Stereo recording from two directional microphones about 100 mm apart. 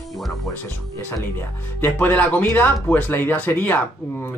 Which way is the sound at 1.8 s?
15° left (ahead or behind).